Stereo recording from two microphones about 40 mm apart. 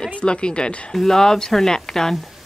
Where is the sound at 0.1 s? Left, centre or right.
Left.